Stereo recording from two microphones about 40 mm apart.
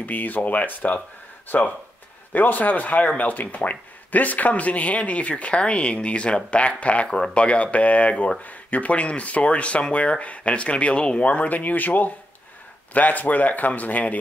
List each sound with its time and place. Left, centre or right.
0.0 s speech: left
8.4 s speech: left
11.2 s speech: left